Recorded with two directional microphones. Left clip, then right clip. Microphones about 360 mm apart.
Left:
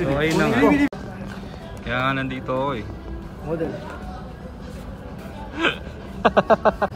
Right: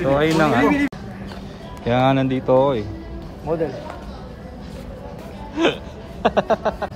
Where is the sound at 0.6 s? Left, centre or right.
Centre.